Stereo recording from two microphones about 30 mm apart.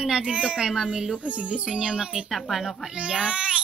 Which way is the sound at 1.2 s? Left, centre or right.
Right.